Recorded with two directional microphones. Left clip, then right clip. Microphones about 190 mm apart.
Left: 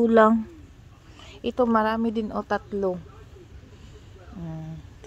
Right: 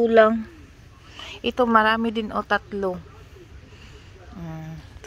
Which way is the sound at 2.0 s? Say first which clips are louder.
Right 1 dB; 20° left (ahead or behind).